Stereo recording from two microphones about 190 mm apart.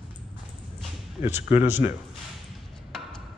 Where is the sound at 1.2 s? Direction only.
15° right (ahead or behind).